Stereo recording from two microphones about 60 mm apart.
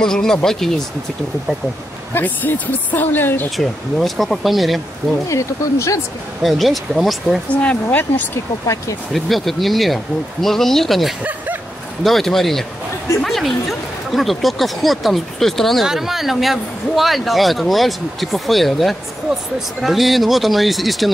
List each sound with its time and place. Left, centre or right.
0.0 s speech: centre
2.1 s speech: left
3.5 s speech: centre
5.3 s speech: left
6.4 s speech: centre
7.4 s speech: left
9.1 s speech: centre